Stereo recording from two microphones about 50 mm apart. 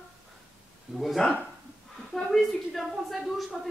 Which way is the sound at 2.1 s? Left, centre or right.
Centre.